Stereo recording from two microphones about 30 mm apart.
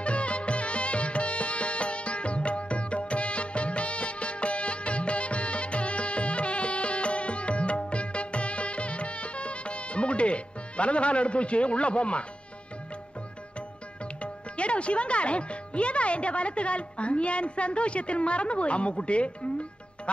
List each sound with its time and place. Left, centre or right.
0.0 s music: left
14.2 s speech: left